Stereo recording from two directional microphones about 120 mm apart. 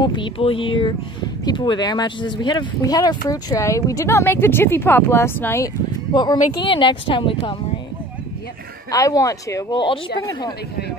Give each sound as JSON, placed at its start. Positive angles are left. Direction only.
{"t": 0.0, "sound": "speech", "side_deg": 40}
{"t": 6.1, "sound": "speech", "side_deg": 35}
{"t": 8.9, "sound": "speech", "side_deg": 30}
{"t": 9.7, "sound": "speech", "side_deg": 40}